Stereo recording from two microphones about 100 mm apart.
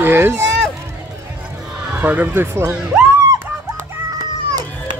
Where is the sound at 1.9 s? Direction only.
15° right (ahead or behind).